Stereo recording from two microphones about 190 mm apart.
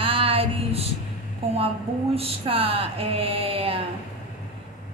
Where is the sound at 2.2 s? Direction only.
30° right (ahead or behind).